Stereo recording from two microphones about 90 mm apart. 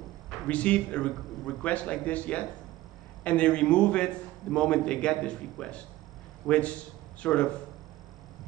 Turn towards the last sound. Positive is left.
turn(degrees=15)  # may be behind; listen again after turning